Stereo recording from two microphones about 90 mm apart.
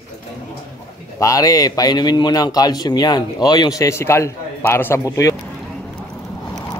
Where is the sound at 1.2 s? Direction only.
40° left (ahead or behind); by 5.0 s 25° left (ahead or behind).